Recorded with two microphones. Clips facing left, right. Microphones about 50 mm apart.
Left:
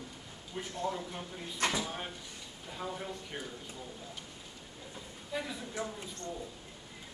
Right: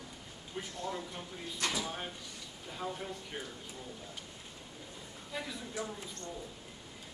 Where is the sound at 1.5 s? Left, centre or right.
Left.